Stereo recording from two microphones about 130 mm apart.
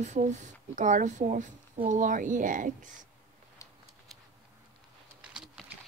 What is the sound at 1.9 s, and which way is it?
Speech, 80° right.